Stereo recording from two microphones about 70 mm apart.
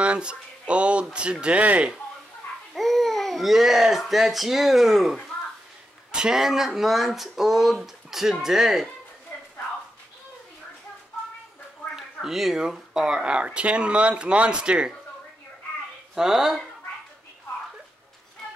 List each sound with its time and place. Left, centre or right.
0.0 s speech: centre
2.7 s speech: centre
11.9 s speech: centre
16.2 s speech: centre